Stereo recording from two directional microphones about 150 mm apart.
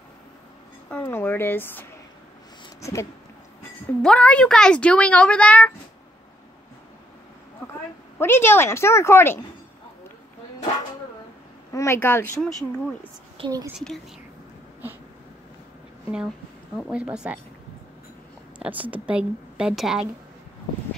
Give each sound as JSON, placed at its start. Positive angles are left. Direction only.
{"t": 0.8, "sound": "a woman's voice", "side_deg": 15}
{"t": 2.8, "sound": "a sound", "side_deg": 20}
{"t": 4.0, "sound": "a woman's voice", "side_deg": 5}
{"t": 8.2, "sound": "a woman's voice", "side_deg": 15}
{"t": 11.7, "sound": "a woman's voice", "side_deg": 20}
{"t": 12.4, "sound": "speech", "side_deg": 0}
{"t": 13.4, "sound": "a woman's voice", "side_deg": -40}
{"t": 13.7, "sound": "speech", "side_deg": 0}
{"t": 16.7, "sound": "a woman's voice", "side_deg": -5}
{"t": 18.6, "sound": "a woman's voice", "side_deg": -10}